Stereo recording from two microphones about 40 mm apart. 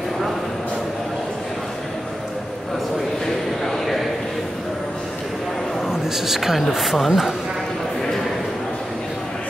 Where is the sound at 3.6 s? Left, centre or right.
Centre.